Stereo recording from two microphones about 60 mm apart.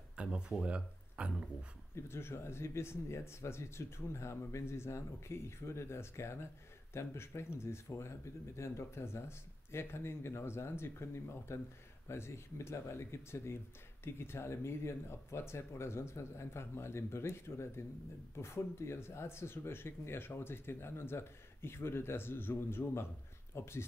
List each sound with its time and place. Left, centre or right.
0.1 s speech: centre
2.0 s speech: left